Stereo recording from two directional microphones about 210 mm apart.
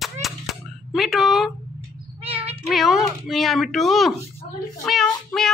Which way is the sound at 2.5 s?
Centre (ahead or behind).